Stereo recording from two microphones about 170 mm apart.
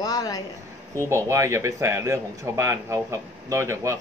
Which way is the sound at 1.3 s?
15° right (ahead or behind).